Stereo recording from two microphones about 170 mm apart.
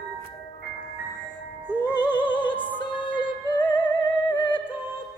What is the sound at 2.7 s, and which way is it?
Music, 30° left (ahead or behind).